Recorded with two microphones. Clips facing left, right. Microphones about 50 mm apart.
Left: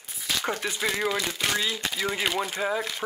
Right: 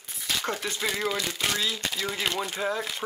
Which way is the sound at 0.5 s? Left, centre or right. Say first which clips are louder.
Left 2 dB; centre.